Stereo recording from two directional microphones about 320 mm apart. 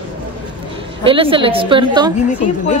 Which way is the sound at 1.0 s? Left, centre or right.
Centre.